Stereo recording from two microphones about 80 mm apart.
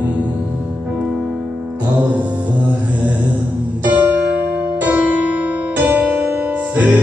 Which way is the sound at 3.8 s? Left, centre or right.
Right.